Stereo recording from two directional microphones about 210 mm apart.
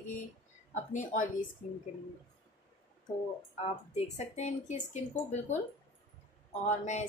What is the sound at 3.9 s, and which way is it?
Speech, 30° left (ahead or behind).